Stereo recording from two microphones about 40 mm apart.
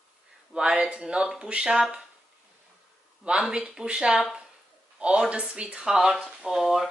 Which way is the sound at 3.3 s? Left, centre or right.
Right.